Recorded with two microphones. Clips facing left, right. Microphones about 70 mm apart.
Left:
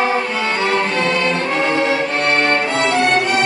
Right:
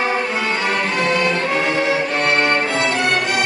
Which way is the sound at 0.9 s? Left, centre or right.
Centre.